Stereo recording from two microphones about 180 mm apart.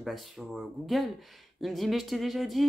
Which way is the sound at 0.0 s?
Centre (ahead or behind).